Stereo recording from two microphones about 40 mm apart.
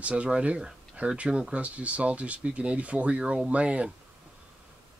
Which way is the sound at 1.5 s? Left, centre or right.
Right.